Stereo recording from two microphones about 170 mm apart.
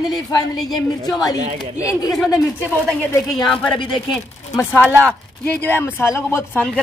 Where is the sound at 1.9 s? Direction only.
20° left (ahead or behind).